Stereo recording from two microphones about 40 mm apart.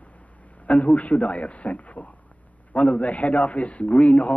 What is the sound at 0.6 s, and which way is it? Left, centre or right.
A man's voice, left.